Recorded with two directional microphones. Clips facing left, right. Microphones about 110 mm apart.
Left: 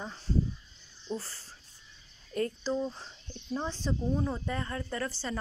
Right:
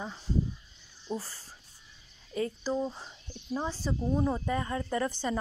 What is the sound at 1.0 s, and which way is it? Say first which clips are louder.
Speech: right 1 dB; 10° right (ahead or behind).